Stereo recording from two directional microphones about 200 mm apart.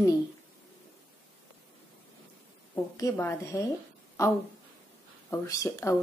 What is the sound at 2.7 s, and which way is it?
Speech, 15° left (ahead or behind).